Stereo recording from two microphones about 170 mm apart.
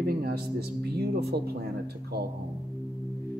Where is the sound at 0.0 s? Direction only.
65° right (ahead or behind).